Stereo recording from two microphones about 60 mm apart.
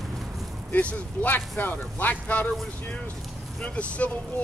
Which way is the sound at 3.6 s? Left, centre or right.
Left.